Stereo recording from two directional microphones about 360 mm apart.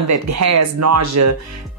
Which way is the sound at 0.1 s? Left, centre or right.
Right.